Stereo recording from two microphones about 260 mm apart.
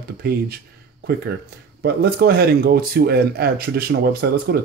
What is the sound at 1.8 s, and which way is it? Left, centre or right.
Speech, right.